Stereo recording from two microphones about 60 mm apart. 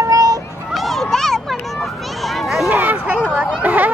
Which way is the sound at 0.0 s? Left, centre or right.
Right.